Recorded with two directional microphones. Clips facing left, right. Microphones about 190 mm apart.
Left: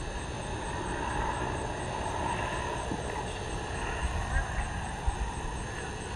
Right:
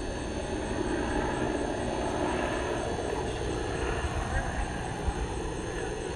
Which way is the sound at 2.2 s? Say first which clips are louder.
Right 6 dB; 60° right (ahead or behind).